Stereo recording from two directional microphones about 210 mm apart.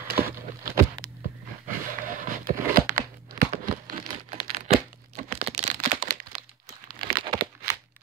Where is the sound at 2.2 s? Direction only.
40° right (ahead or behind).